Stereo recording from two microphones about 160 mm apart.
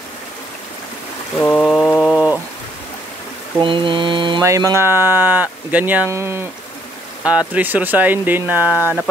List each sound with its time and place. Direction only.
1.4 s a sound: 5° left (ahead or behind)
3.6 s mantra: 30° right (ahead or behind)
4.4 s speech: 20° right (ahead or behind)